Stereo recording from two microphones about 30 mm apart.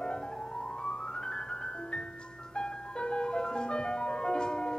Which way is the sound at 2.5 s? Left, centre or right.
Left.